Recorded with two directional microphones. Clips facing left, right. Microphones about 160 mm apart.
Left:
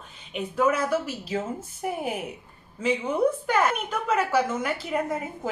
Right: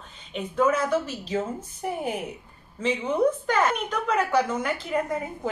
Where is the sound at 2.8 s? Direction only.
10° left (ahead or behind).